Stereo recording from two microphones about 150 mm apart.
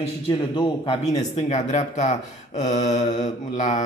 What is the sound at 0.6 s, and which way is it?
Speech, 40° left (ahead or behind).